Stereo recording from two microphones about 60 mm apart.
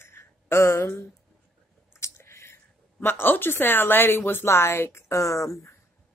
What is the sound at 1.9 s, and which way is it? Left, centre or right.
A woman's voice, left.